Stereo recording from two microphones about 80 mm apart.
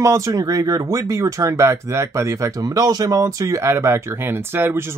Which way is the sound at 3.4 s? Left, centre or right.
Right.